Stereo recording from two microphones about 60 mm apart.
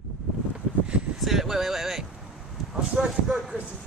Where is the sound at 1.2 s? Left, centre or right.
Centre.